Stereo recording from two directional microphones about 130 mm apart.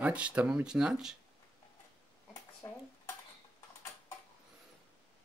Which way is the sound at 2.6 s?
25° left (ahead or behind).